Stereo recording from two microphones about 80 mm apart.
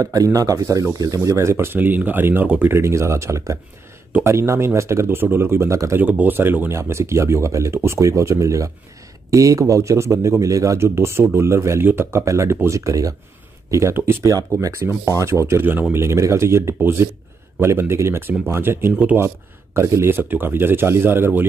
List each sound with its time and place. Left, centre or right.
0.0 s speech: right
2.8 s speech: right
5.9 s speech: right